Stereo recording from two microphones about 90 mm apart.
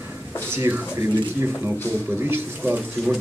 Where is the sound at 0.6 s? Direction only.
25° right (ahead or behind).